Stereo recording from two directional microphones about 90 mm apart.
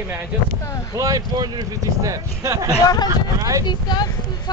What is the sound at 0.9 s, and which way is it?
Speech, 40° right (ahead or behind).